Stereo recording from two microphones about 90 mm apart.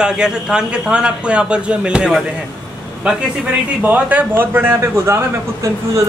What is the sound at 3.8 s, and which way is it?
A man's voice, 20° right (ahead or behind).